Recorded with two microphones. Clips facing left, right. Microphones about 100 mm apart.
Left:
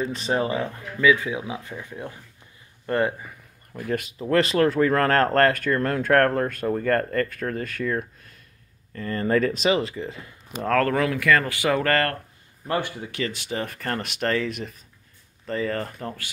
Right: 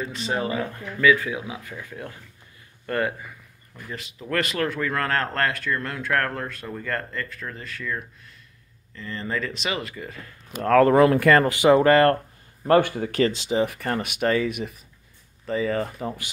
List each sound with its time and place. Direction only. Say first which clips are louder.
0.1 s speech: left 2 dB; 30° left (ahead or behind)
3.7 s speech: left 10 dB; 60° left (ahead or behind)
4.2 s speech: left 5 dB; 30° left (ahead or behind)
11.0 s speech: right 5 dB; 40° right (ahead or behind)
11.4 s speech: right 7 dB; 25° right (ahead or behind)
12.6 s speech: right 8 dB; 55° right (ahead or behind)
13.3 s speech: right 5 dB; 25° right (ahead or behind)
13.6 s speech: right 4 dB; 5° right (ahead or behind)